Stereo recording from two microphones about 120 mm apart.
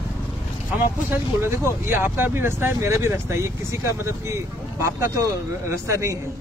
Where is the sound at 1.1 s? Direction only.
20° right (ahead or behind).